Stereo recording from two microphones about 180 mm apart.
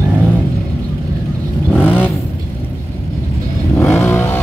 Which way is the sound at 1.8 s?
10° left (ahead or behind).